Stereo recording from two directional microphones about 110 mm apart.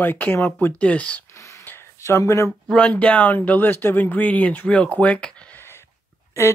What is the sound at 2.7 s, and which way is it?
Speech, 10° left (ahead or behind).